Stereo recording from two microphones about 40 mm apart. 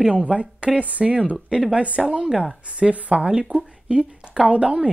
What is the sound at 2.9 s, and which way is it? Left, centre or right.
A woman's voice, right.